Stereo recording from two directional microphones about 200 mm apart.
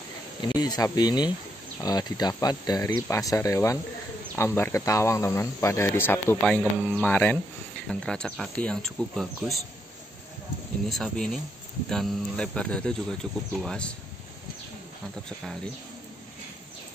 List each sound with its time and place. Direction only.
0.4 s speech: 20° left (ahead or behind); by 9.6 s centre (ahead or behind)
10.9 s speech: centre (ahead or behind)